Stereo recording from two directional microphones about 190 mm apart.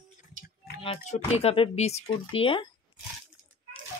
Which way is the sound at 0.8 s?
35° left (ahead or behind).